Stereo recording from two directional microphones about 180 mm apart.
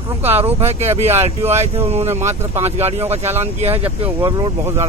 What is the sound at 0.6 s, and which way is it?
Speech, 35° right (ahead or behind).